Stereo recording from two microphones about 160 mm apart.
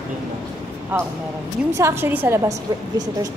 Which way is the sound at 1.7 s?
15° right (ahead or behind).